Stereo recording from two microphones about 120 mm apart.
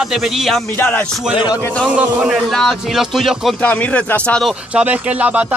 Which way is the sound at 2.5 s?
5° left (ahead or behind).